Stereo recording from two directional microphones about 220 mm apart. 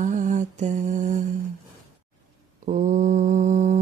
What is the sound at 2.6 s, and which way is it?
Mantra, 35° right (ahead or behind).